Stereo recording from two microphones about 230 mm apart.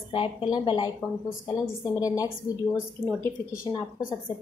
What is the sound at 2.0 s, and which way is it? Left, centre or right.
Speech, centre.